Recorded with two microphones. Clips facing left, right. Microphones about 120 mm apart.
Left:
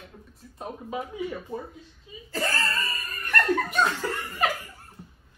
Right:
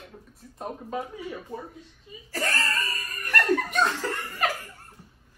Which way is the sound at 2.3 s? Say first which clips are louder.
Left 1 dB; 25° left (ahead or behind).